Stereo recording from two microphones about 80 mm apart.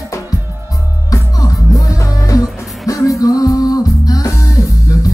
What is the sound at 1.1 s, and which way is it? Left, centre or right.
Music, left.